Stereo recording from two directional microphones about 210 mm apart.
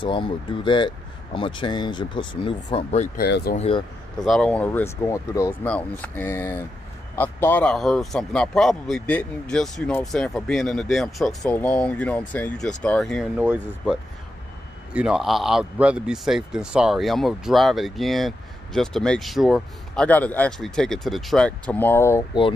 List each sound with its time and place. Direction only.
0.0 s speech: 25° left (ahead or behind)
3.2 s speech: 50° left (ahead or behind)
3.5 s speech: 30° left (ahead or behind)
4.2 s speech: 5° left (ahead or behind)
15.0 s speech: 5° right (ahead or behind); by 22.5 s 20° left (ahead or behind)